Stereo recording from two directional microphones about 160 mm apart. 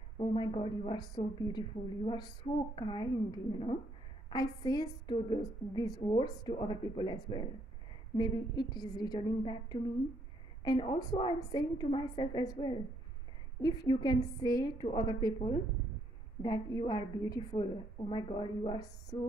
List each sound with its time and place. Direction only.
0.2 s a woman's voice: 30° left (ahead or behind)